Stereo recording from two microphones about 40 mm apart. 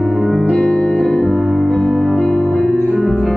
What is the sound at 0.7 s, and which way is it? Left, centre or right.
Music, centre.